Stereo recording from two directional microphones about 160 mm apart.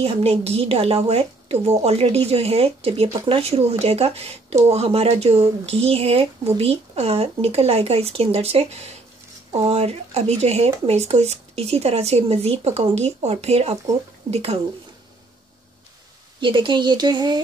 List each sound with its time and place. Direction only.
0.0 s speech: 35° right (ahead or behind)
16.3 s speech: 30° right (ahead or behind)